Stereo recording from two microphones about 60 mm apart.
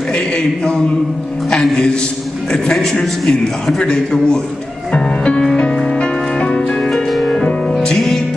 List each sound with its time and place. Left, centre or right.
1.5 s a man's voice: centre
4.9 s music: centre